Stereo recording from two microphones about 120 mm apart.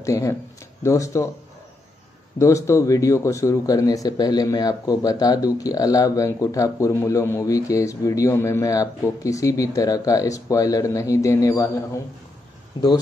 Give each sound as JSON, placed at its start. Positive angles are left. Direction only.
{"t": 0.0, "sound": "speech", "side_deg": 25}
{"t": 2.3, "sound": "speech", "side_deg": 25}